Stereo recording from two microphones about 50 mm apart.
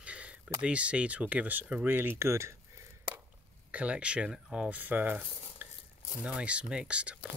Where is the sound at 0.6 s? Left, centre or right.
Right.